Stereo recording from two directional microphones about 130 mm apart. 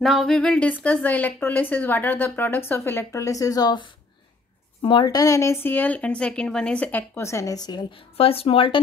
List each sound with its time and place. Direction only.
0.0 s a sound: centre (ahead or behind)
0.8 s a woman's voice: 15° left (ahead or behind); by 8.0 s 30° left (ahead or behind)
8.2 s speech: 45° left (ahead or behind)